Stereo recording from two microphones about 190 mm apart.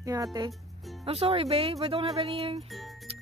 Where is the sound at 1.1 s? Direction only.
30° right (ahead or behind).